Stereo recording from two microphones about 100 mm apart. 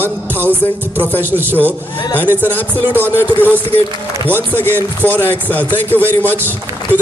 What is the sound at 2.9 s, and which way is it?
Speech, 20° right (ahead or behind).